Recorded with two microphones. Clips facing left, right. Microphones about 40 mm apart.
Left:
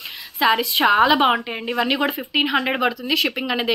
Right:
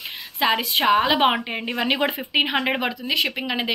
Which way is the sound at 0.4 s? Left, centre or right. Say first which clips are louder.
Left 3 dB; centre.